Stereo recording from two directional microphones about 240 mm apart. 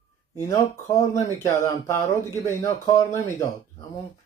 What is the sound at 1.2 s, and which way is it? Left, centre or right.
Speech, centre.